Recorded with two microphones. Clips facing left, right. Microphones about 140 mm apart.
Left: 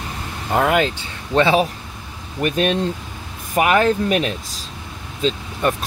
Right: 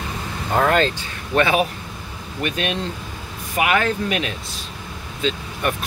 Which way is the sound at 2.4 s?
40° left (ahead or behind).